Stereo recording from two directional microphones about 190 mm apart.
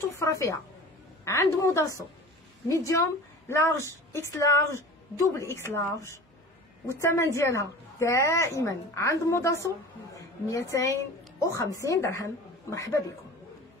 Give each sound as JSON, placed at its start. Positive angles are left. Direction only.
{"t": 0.2, "sound": "a woman's voice", "side_deg": 15}